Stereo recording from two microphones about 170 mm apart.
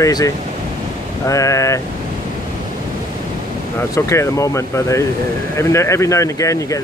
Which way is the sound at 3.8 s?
15° left (ahead or behind).